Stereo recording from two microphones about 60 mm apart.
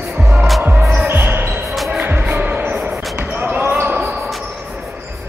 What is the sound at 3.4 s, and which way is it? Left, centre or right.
Basketball bounce, right.